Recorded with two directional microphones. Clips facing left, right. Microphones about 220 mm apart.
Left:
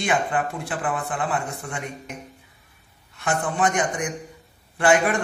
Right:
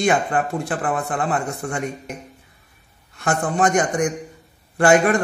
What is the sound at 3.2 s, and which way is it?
A man's voice, 45° right (ahead or behind).